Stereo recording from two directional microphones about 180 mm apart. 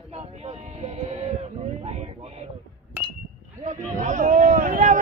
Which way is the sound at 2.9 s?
10° right (ahead or behind).